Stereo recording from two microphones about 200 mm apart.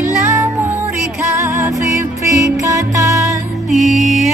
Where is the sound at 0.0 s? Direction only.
10° right (ahead or behind).